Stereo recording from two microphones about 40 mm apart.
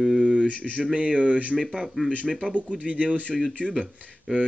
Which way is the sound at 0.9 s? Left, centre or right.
Right.